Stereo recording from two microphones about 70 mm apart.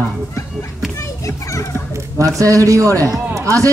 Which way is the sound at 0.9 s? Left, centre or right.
Left.